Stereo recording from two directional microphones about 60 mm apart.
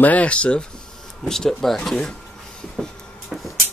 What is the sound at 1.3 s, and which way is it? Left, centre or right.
Speech, centre.